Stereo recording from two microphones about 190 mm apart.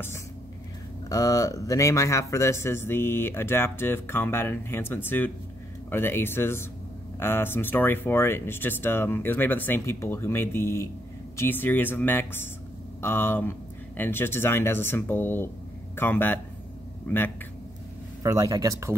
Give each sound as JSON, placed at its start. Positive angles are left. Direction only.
{"t": 1.0, "sound": "speech", "side_deg": 20}
{"t": 18.2, "sound": "speech", "side_deg": -15}